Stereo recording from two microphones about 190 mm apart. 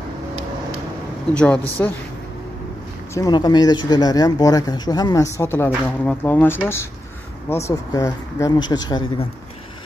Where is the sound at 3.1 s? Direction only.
20° left (ahead or behind).